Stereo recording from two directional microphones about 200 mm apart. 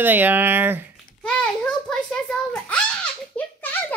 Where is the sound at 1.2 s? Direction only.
5° left (ahead or behind).